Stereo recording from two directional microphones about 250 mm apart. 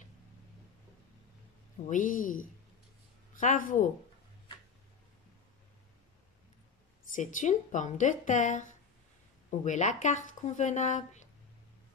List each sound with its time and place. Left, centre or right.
1.9 s a woman's voice: left
7.1 s a woman's voice: left